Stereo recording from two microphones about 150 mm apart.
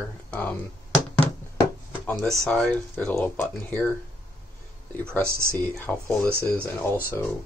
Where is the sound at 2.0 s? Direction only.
5° left (ahead or behind).